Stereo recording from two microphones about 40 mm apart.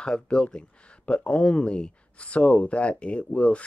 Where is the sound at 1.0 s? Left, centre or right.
Left.